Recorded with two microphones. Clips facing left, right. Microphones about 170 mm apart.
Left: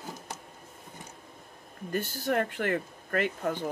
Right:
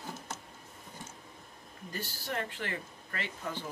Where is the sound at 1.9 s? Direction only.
55° left (ahead or behind).